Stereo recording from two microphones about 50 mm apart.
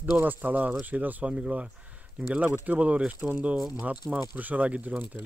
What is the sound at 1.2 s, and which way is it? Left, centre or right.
Speech, right.